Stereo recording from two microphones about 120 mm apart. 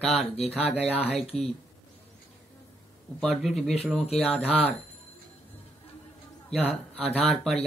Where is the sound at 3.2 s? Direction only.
Centre (ahead or behind).